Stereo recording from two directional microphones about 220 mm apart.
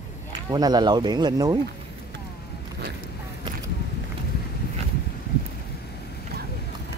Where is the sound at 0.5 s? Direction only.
20° right (ahead or behind).